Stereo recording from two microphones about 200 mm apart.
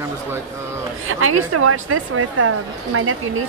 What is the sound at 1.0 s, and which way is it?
A woman's voice, 90° right.